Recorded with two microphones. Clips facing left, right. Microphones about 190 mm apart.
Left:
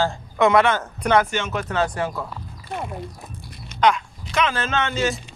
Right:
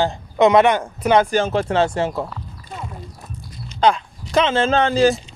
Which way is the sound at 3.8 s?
30° right (ahead or behind).